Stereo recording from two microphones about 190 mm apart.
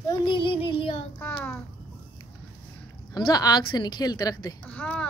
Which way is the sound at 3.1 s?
20° left (ahead or behind).